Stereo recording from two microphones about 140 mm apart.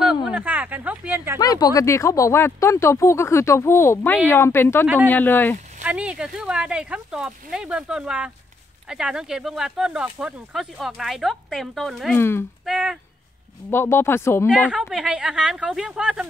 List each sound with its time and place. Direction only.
0.0 s a sound: centre (ahead or behind)
1.4 s speech: 25° left (ahead or behind)
5.9 s speech: 10° right (ahead or behind)
12.2 s speech: 15° left (ahead or behind)
12.6 s speech: 5° right (ahead or behind)
13.7 s speech: 15° left (ahead or behind)
14.7 s speech: 5° right (ahead or behind)